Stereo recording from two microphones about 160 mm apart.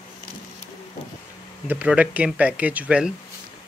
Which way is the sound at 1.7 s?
10° right (ahead or behind).